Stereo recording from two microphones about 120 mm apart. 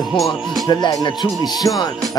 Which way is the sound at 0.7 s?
35° left (ahead or behind).